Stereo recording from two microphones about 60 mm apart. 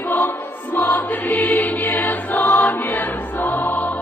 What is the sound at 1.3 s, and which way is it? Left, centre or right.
Music, left.